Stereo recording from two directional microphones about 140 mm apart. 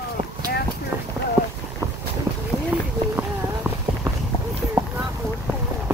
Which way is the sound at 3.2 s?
20° right (ahead or behind).